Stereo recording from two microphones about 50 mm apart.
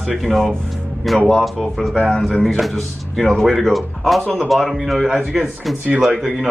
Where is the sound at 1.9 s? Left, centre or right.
Left.